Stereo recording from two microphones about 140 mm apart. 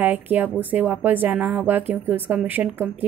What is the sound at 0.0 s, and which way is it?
Speech, 10° right (ahead or behind).